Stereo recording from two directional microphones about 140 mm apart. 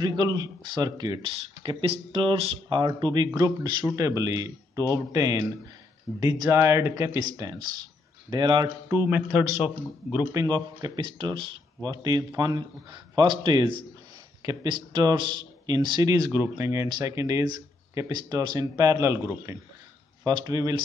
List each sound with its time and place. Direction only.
0.0 s a man's voice: 30° right (ahead or behind)
8.3 s speech: 30° right (ahead or behind)
8.8 s a man's voice: 15° right (ahead or behind)
10.3 s a man's voice: 30° right (ahead or behind)